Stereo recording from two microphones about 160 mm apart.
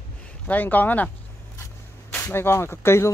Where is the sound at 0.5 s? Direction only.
10° left (ahead or behind).